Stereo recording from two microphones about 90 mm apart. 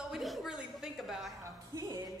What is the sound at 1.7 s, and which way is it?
Music, 40° right (ahead or behind).